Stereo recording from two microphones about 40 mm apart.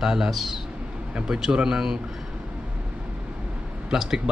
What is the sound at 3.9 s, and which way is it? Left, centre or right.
Speech, centre.